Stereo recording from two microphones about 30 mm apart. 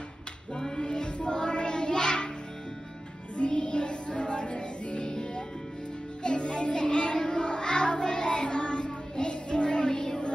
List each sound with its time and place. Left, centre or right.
0.6 s child singing: left
3.3 s music: left